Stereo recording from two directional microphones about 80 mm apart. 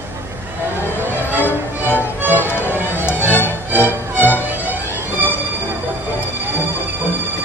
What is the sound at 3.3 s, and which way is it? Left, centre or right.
Music, left.